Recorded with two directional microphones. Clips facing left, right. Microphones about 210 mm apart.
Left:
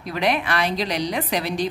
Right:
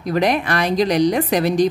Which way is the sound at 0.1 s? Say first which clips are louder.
Right 4 dB; 45° right (ahead or behind).